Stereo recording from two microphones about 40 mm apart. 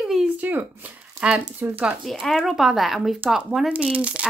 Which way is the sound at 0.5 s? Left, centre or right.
Right.